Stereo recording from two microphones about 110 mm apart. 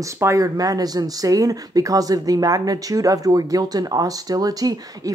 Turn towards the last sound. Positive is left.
turn(degrees=-35)  # may be behind; listen again after turning